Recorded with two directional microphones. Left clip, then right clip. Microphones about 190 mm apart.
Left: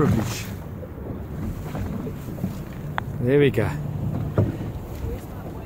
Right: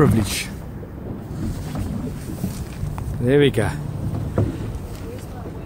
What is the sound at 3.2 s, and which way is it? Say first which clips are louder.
Speech: right 3 dB; 10° right (ahead or behind).